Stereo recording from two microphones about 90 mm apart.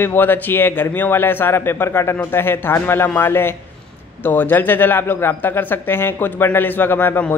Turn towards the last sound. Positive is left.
turn(degrees=20)  # may be behind; listen again after turning